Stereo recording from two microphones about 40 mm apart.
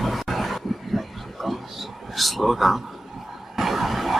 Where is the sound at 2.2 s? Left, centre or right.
Centre.